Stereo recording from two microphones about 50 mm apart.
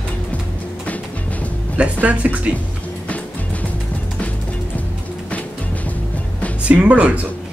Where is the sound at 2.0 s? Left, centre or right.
Right.